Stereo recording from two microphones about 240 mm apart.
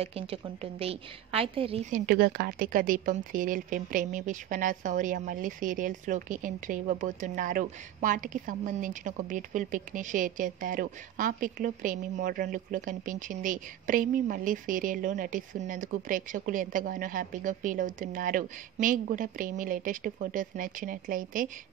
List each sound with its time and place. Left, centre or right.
0.0 s a woman's voice: right